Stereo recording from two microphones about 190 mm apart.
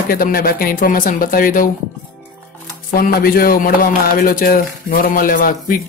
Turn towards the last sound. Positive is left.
turn(degrees=45)  # may be behind; listen again after turning